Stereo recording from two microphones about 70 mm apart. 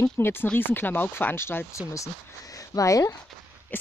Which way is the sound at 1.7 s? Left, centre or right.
Left.